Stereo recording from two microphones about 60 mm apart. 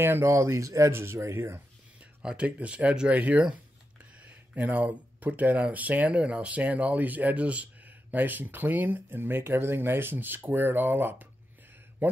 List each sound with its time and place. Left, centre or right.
0.0 s speech: right
2.0 s speech: right